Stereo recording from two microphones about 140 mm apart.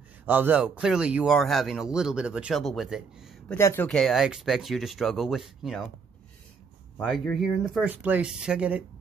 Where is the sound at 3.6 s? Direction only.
20° left (ahead or behind).